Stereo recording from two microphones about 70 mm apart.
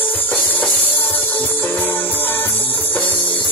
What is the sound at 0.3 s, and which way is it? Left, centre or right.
Music, left.